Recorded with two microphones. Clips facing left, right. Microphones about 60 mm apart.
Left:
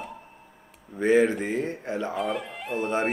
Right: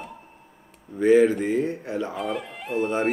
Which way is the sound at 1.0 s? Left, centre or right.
Centre.